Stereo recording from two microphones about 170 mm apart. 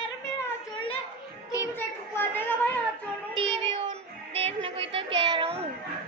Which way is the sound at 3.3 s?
35° right (ahead or behind).